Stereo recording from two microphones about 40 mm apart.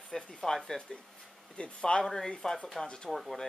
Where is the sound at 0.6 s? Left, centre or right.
Left.